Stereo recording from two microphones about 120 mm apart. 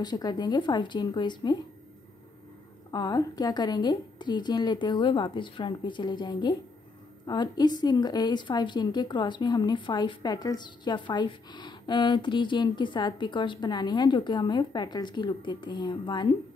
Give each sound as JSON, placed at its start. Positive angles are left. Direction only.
{"t": 0.0, "sound": "a woman's voice", "side_deg": 35}
{"t": 2.9, "sound": "a woman's voice", "side_deg": 35}